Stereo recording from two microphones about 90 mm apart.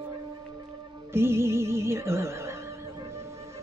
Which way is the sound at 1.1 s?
30° right (ahead or behind).